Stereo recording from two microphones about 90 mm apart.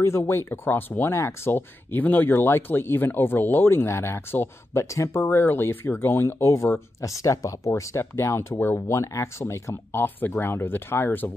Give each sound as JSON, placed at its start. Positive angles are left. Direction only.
{"t": 0.0, "sound": "speech", "side_deg": 30}